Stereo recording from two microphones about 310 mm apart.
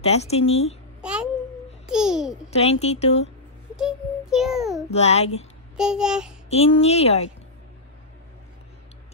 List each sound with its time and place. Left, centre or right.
0.0 s speech: centre
1.0 s babbling: centre
1.9 s a child's voice: centre
2.5 s speech: centre
3.7 s a sound: centre
4.9 s speech: left
5.8 s a child's voice: centre
6.5 s speech: centre